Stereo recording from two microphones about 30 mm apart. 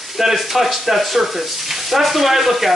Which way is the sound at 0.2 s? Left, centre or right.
Centre.